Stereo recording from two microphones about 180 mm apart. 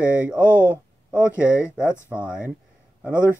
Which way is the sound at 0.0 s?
5° right (ahead or behind).